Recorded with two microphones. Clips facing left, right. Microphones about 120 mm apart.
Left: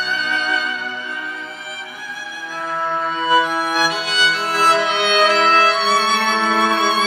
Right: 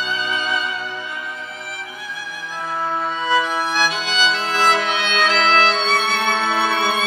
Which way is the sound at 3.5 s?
Centre (ahead or behind).